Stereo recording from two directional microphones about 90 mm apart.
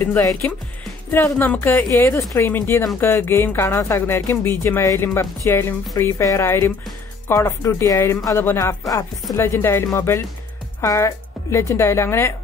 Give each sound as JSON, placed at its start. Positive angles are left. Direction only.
{"t": 0.2, "sound": "a woman's voice", "side_deg": 35}